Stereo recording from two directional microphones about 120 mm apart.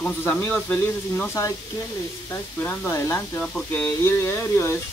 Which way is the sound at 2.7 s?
20° left (ahead or behind).